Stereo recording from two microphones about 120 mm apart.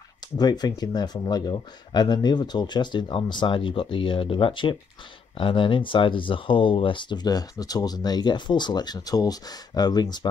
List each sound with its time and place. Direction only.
0.4 s speech: 35° left (ahead or behind)